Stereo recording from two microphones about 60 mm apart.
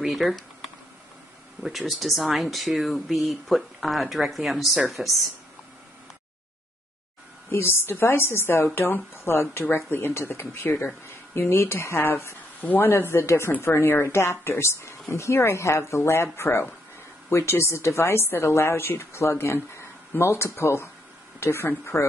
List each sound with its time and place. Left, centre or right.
0.0 s speech: centre
7.5 s speech: left
12.5 s speech: left